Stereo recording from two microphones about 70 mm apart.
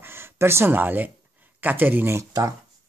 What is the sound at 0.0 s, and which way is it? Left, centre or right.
Speech, right.